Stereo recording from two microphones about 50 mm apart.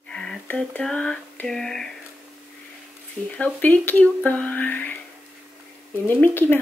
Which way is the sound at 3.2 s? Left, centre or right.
Centre.